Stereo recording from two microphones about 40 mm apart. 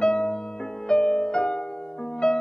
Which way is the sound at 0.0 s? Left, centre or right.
Centre.